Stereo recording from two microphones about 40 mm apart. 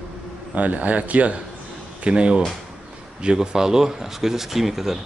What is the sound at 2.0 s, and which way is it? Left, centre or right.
Speech, right.